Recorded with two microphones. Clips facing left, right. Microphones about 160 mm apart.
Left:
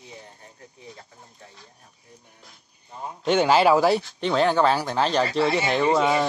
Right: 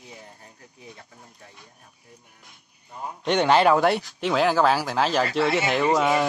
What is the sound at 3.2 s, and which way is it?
Speech, 5° left (ahead or behind).